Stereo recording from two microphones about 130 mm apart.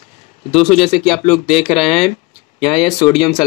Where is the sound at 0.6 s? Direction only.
Centre (ahead or behind).